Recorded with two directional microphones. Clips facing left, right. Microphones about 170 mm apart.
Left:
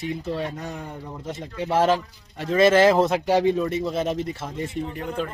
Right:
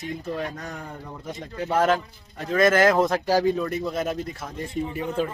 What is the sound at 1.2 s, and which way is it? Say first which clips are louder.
A man's voice: left 1 dB; 25° left (ahead or behind).